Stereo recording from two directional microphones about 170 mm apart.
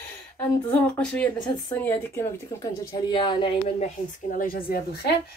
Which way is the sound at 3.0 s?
30° left (ahead or behind).